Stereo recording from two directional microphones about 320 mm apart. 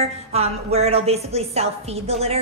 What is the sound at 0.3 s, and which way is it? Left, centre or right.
A woman's voice, centre.